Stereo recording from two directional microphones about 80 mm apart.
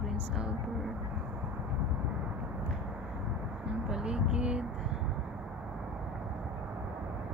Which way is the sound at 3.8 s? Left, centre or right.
Centre.